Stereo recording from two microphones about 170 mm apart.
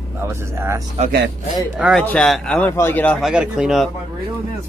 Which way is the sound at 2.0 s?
5° left (ahead or behind).